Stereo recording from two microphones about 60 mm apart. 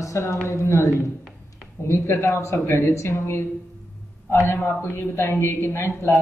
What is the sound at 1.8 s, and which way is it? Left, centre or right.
A woman's voice, left.